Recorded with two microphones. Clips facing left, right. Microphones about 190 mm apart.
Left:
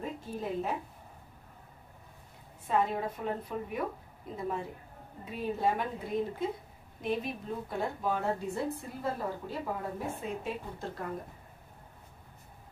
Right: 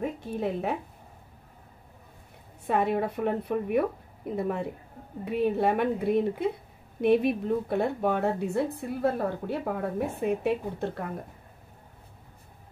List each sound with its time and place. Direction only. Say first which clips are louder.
0.4 s a woman's voice: right 5 dB; 65° right (ahead or behind)
2.6 s a woman's voice: right 4 dB; 65° right (ahead or behind)